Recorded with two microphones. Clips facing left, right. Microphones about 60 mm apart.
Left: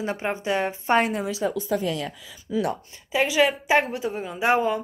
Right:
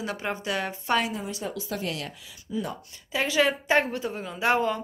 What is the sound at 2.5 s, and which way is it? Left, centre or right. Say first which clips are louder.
Speech: left 6 dB; left.